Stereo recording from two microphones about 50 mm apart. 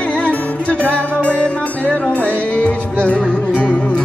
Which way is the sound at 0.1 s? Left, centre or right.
Left.